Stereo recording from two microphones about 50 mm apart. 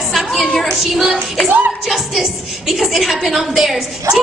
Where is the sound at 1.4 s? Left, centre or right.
Right.